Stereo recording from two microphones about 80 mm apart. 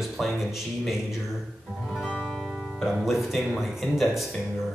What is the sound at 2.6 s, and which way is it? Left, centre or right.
Speech, centre.